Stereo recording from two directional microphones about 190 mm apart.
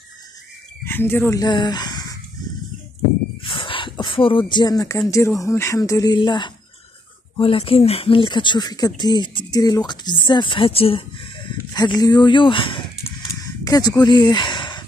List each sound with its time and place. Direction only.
0.8 s speech: 10° left (ahead or behind)
3.4 s speech: 25° left (ahead or behind)
13.0 s a sound: 20° left (ahead or behind)